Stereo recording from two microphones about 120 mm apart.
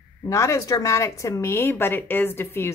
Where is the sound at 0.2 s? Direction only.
25° left (ahead or behind).